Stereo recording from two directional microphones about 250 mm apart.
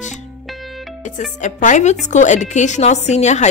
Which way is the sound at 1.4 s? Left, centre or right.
Left.